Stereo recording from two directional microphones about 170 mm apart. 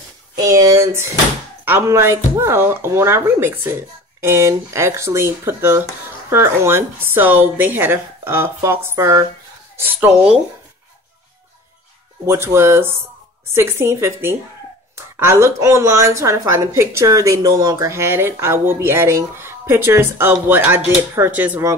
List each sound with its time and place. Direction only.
0.5 s speech: 20° right (ahead or behind)
12.3 s speech: 15° right (ahead or behind)